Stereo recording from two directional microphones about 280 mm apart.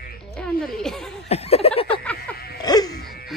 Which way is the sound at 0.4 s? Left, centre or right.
Centre.